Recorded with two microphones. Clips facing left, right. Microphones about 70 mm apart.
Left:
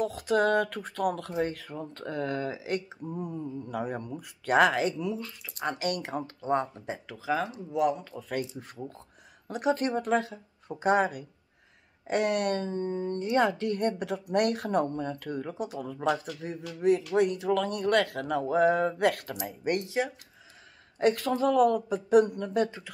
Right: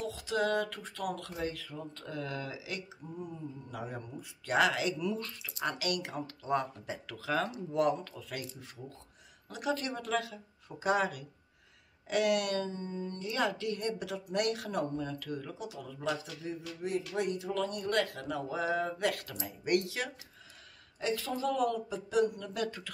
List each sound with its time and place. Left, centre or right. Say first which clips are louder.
0.0 s speech: left 7 dB; left; by 7.4 s centre
7.7 s speech: left 3 dB; centre
8.1 s speech: left 8 dB; left
16.3 s speech: left 3 dB; left
19.4 s speech: left 1 dB; left
21.0 s speech: left 8 dB; left